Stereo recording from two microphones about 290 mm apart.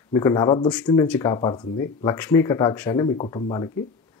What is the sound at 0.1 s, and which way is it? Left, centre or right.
Speech, centre.